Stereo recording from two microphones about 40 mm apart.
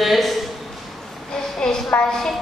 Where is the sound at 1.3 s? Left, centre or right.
Centre.